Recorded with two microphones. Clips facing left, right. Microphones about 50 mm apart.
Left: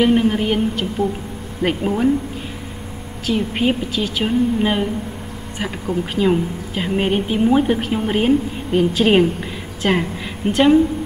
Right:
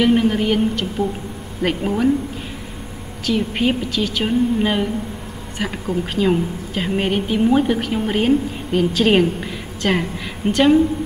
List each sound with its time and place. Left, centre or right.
0.0 s a woman's voice: centre
3.3 s a woman's voice: centre